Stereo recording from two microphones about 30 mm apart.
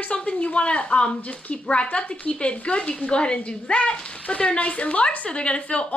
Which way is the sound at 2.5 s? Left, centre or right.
Left.